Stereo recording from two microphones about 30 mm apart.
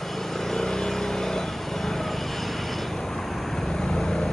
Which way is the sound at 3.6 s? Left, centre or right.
Centre.